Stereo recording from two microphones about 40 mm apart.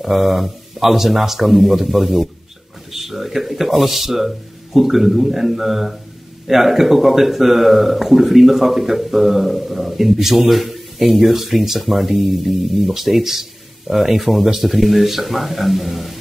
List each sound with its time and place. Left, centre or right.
0.0 s speech: centre